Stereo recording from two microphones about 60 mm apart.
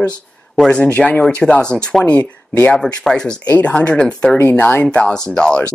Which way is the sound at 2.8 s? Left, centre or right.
Centre.